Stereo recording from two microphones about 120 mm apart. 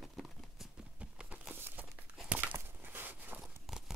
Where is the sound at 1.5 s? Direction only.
20° right (ahead or behind).